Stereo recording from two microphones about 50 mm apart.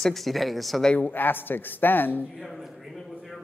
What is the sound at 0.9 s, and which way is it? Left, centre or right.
Speech, left.